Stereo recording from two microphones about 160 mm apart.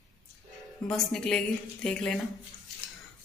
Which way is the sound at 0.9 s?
5° left (ahead or behind).